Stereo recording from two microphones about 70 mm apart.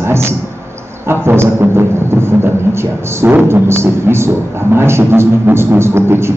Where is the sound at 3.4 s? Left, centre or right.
Right.